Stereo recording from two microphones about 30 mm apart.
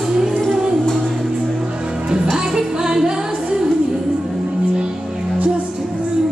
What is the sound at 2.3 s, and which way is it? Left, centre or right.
Music, centre.